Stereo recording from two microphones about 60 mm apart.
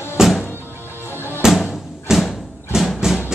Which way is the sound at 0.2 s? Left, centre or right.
Centre.